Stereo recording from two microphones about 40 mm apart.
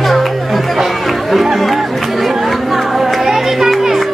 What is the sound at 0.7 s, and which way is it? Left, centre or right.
Chatter, centre.